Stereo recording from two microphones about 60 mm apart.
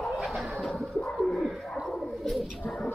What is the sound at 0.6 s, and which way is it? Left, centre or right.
Bird, centre.